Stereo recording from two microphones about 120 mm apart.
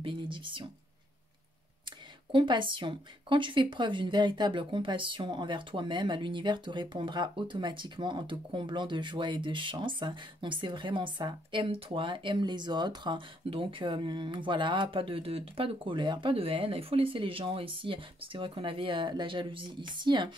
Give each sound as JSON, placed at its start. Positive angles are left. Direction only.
{"t": 0.0, "sound": "a woman's voice", "side_deg": -45}
{"t": 2.3, "sound": "a woman's voice", "side_deg": -45}